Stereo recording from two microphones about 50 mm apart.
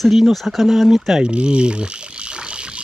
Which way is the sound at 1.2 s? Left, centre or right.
Right.